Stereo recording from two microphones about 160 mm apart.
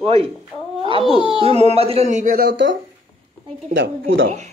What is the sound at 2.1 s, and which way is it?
Speech, 65° right (ahead or behind).